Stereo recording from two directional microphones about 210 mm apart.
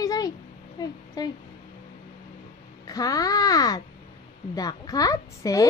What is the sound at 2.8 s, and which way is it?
A child's voice, 15° left (ahead or behind).